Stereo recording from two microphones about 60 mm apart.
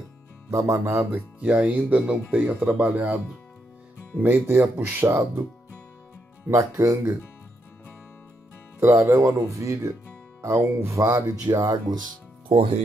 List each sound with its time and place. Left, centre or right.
0.5 s speech: right
1.4 s speech: right
4.2 s speech: right
5.0 s speech: right
6.4 s speech: right
8.7 s speech: right
10.4 s speech: right
10.9 s speech: right